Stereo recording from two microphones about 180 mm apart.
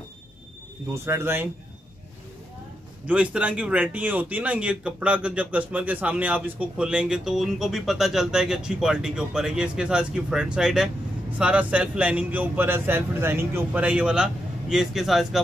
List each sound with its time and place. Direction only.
0.9 s a man's voice: 15° right (ahead or behind)
3.1 s a man's voice: 5° right (ahead or behind)